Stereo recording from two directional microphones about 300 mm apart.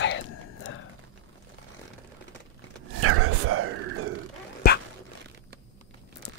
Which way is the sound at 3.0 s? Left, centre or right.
Right.